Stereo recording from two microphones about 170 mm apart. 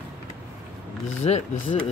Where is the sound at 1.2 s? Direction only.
40° left (ahead or behind).